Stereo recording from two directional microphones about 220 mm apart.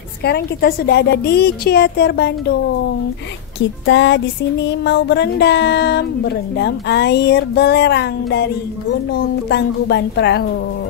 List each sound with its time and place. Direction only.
0.2 s speech: 45° left (ahead or behind)
3.5 s speech: 55° left (ahead or behind)
9.5 s speech: 50° left (ahead or behind)